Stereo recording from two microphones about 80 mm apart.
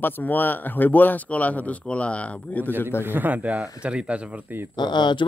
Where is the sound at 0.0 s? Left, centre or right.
Left.